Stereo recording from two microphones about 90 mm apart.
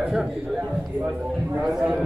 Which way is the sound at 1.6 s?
15° right (ahead or behind).